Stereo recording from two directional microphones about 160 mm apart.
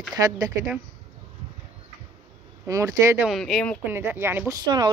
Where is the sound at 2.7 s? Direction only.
20° right (ahead or behind).